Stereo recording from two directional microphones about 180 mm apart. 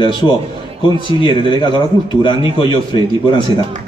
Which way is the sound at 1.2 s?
25° left (ahead or behind).